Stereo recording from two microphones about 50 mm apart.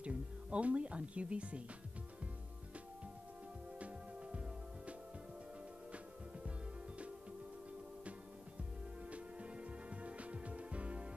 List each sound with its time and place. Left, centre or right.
0.0 s speech: right
3.8 s music: right
9.1 s music: right